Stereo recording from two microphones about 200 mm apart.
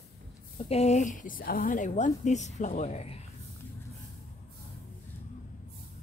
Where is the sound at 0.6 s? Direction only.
30° left (ahead or behind).